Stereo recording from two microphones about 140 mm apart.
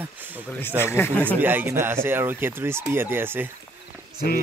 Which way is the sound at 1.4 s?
15° right (ahead or behind).